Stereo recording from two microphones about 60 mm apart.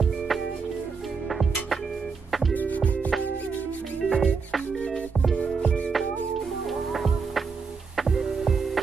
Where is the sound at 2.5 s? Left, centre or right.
Left.